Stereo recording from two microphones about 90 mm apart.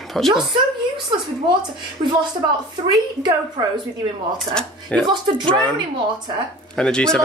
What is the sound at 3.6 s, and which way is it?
Speech, 60° right (ahead or behind).